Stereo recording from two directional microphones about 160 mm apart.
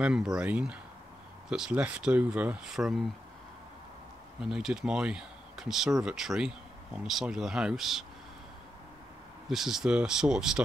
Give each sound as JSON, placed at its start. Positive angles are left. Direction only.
{"t": 0.0, "sound": "speech", "side_deg": -5}
{"t": 4.4, "sound": "speech", "side_deg": -5}
{"t": 9.5, "sound": "speech", "side_deg": 0}